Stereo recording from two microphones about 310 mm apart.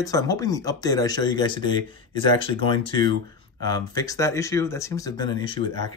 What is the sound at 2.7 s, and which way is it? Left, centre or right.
Speech, centre.